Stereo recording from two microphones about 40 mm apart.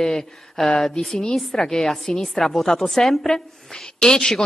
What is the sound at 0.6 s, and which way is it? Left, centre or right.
Speech, centre.